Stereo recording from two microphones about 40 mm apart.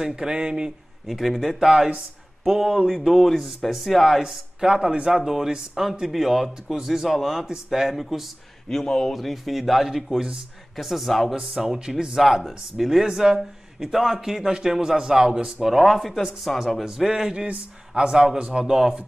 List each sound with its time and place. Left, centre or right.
0.0 s speech: centre
1.0 s speech: centre
1.6 s a man's voice: centre
2.9 s speech: centre
4.2 s a man's voice: centre
7.4 s a man's voice: centre
8.6 s a man's voice: centre
9.1 s speech: centre
11.3 s a man's voice: centre
15.6 s a man's voice: centre
17.5 s a man's voice: right